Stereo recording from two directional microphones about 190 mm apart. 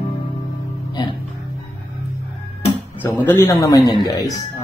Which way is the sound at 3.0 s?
10° left (ahead or behind).